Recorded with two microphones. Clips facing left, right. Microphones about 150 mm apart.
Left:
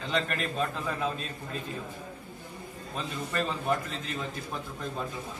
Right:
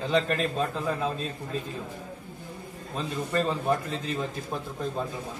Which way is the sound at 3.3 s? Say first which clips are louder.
Right 4 dB; 30° right (ahead or behind).